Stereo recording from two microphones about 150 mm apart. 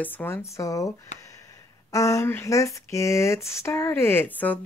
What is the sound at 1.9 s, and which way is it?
Speech, 20° left (ahead or behind).